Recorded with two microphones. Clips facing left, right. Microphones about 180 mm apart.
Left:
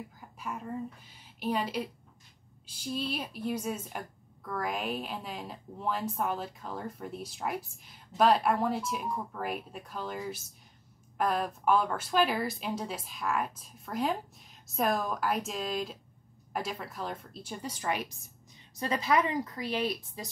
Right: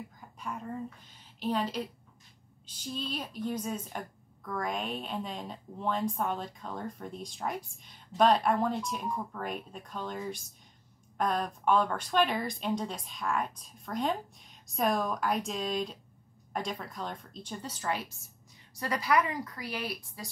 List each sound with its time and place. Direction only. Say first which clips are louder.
0.4 s a woman's voice: left 1 dB; 5° left (ahead or behind)